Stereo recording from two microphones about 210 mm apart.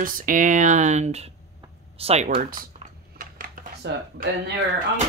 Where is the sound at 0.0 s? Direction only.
40° right (ahead or behind).